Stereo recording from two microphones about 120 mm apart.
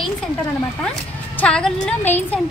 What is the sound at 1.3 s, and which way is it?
Speech, 10° left (ahead or behind).